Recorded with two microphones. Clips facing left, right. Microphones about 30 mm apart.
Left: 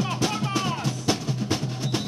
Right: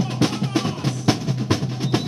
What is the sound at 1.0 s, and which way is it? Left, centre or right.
Music, right.